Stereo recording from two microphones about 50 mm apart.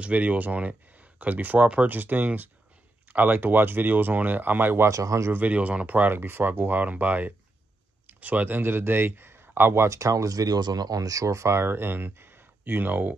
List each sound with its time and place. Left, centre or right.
0.0 s speech: right
4.8 s a man's voice: right
5.3 s speech: right
6.1 s a man's voice: right
9.8 s speech: right
11.6 s speech: right